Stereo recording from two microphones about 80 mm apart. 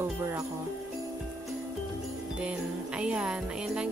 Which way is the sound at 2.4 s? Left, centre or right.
Centre.